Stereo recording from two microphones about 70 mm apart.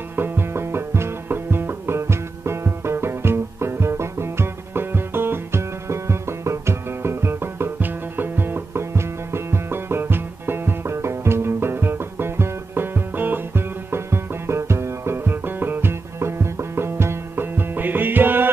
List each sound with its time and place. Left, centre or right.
0.1 s music: right